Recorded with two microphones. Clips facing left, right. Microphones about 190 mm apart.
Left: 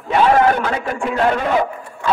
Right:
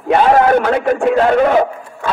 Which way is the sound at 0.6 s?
60° right (ahead or behind).